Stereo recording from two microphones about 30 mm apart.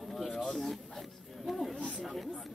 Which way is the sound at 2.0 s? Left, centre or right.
Centre.